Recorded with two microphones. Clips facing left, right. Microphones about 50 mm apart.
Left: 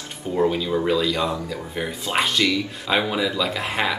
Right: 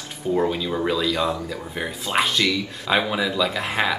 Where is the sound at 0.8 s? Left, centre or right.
Centre.